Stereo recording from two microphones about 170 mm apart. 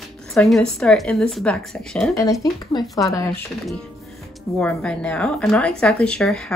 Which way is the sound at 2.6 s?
25° left (ahead or behind).